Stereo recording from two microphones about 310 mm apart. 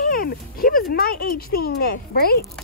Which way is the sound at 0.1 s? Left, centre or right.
Left.